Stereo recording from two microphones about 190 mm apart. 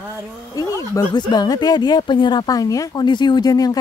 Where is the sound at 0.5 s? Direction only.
20° left (ahead or behind).